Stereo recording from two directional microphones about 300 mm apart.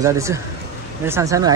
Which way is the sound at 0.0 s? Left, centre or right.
Centre.